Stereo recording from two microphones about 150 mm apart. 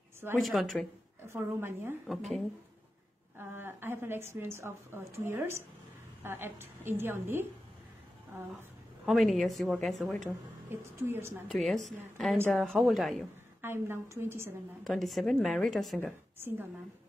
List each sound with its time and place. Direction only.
0.4 s a woman's voice: centre (ahead or behind)
1.2 s a woman's voice: 15° right (ahead or behind)
2.0 s a woman's voice: centre (ahead or behind)
3.3 s a woman's voice: 15° right (ahead or behind)
9.0 s a woman's voice: centre (ahead or behind)
10.7 s a woman's voice: 15° right (ahead or behind)
11.5 s a woman's voice: centre (ahead or behind)
13.6 s a woman's voice: 15° right (ahead or behind)
14.8 s a woman's voice: centre (ahead or behind)
16.3 s a woman's voice: 15° right (ahead or behind)